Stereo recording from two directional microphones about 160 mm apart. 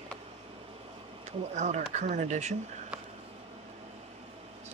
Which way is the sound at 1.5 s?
45° right (ahead or behind).